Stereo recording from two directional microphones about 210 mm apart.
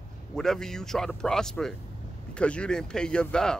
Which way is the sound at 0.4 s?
Centre (ahead or behind).